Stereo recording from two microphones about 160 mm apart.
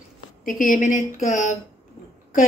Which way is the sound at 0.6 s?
55° left (ahead or behind).